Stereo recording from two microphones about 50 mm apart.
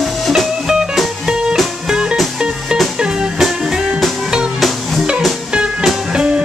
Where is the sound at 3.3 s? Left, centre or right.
Centre.